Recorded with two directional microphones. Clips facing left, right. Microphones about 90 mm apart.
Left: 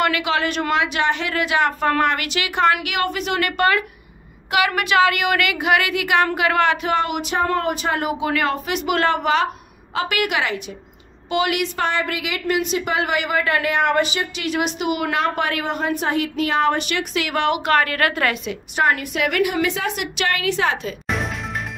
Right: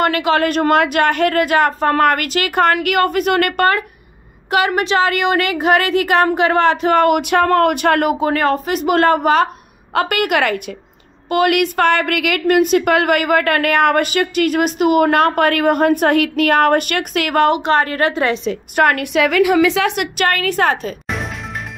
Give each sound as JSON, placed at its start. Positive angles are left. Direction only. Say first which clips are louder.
{"t": 0.0, "sound": "a woman's voice", "louder": "right 5 dB", "side_deg": -40}
{"t": 4.5, "sound": "a woman's voice", "louder": "right 4 dB", "side_deg": -35}
{"t": 7.0, "sound": "a woman's voice", "louder": "right 8 dB", "side_deg": -55}
{"t": 8.2, "sound": "a woman's voice", "louder": "right 5 dB", "side_deg": -40}
{"t": 17.6, "sound": "a woman's voice", "louder": "right 3 dB", "side_deg": -30}
{"t": 18.8, "sound": "a woman's voice", "louder": "right 5 dB", "side_deg": -65}
{"t": 19.7, "sound": "a woman's voice", "louder": "right 7 dB", "side_deg": -90}
{"t": 20.2, "sound": "a woman's voice", "louder": "right 4 dB", "side_deg": -50}
{"t": 21.1, "sound": "music", "louder": "left 2 dB", "side_deg": 0}